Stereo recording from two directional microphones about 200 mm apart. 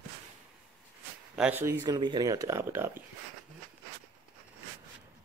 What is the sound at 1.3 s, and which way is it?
A man's voice, 5° right (ahead or behind).